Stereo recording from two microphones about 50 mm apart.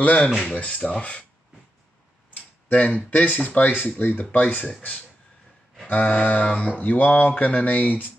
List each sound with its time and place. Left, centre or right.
0.0 s speech: left
2.7 s speech: left
5.9 s speech: left